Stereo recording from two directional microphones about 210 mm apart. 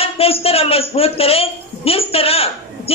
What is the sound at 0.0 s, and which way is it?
A woman's voice, 30° left (ahead or behind).